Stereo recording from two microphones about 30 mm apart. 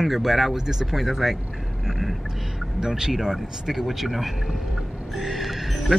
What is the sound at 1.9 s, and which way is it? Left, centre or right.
Vehicle, centre.